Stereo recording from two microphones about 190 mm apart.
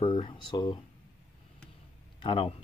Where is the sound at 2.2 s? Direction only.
25° left (ahead or behind).